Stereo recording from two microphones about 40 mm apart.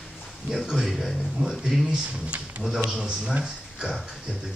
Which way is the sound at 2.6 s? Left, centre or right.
Right.